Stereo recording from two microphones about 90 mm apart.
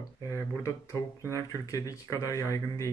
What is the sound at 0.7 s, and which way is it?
Speech, 35° left (ahead or behind).